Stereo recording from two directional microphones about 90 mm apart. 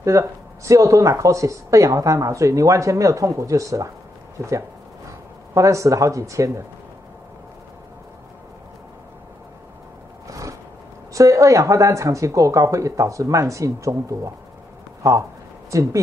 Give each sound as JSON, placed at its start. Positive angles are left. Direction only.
{"t": 0.0, "sound": "speech", "side_deg": -35}
{"t": 10.2, "sound": "a sound", "side_deg": -35}
{"t": 11.1, "sound": "speech", "side_deg": -35}
{"t": 15.7, "sound": "speech", "side_deg": -35}